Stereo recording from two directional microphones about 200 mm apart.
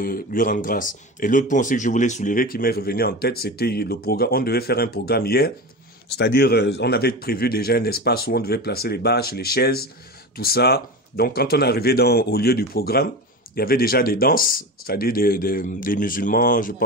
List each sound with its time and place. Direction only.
0.0 s speech: 45° left (ahead or behind)